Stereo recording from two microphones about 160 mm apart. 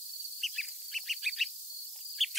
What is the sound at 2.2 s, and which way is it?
Bird, centre (ahead or behind).